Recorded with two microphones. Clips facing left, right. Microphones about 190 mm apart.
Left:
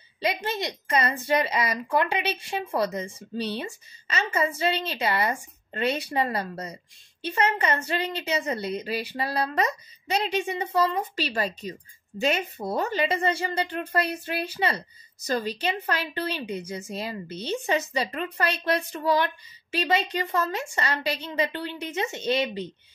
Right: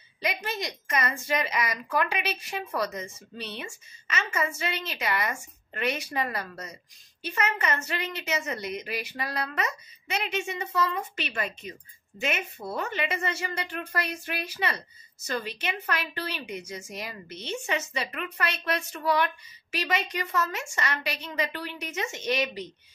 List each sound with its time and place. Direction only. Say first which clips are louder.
0.2 s a woman's voice: left 4 dB; 30° left (ahead or behind)